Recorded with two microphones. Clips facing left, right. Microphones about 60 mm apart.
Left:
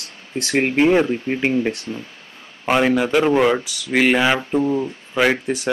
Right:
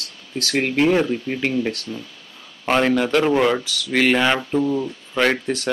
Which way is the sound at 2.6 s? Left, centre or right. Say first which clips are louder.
Left 1 dB; centre.